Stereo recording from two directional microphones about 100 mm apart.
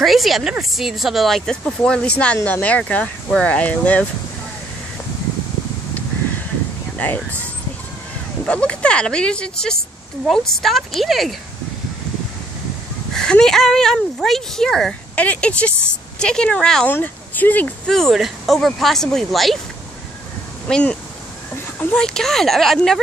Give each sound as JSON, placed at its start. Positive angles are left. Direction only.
{"t": 0.0, "sound": "speech", "side_deg": 0}
{"t": 7.0, "sound": "speech", "side_deg": 15}
{"t": 13.1, "sound": "speech", "side_deg": 5}
{"t": 16.9, "sound": "speech", "side_deg": 20}
{"t": 17.8, "sound": "speech", "side_deg": 0}
{"t": 20.6, "sound": "speech", "side_deg": 10}